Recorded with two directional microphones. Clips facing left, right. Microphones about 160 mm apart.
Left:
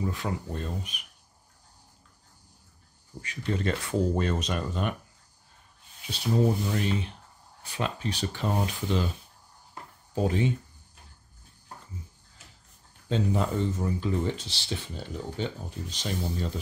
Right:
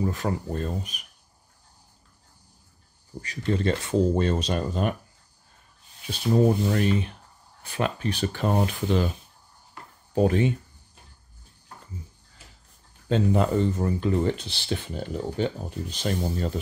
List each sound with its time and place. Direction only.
0.0 s speech: 45° right (ahead or behind)
3.2 s speech: 35° right (ahead or behind)
6.7 s speech: 55° right (ahead or behind)
10.1 s speech: 60° right (ahead or behind)
13.1 s speech: 65° right (ahead or behind)